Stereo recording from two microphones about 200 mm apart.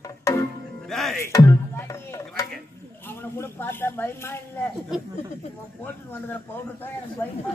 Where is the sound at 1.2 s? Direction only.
15° left (ahead or behind).